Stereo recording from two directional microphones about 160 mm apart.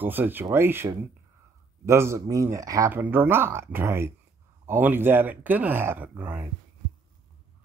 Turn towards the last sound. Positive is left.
turn(degrees=-10)  # may be behind; listen again after turning